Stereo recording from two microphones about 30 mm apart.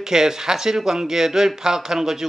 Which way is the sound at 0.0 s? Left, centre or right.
Centre.